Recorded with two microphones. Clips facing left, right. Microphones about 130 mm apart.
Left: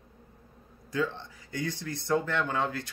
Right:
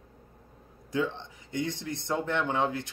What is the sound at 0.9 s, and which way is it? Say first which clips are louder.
Speech: right 1 dB; 20° right (ahead or behind).